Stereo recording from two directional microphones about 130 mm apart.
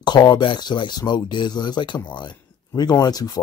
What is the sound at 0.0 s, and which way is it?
Speech, 35° left (ahead or behind).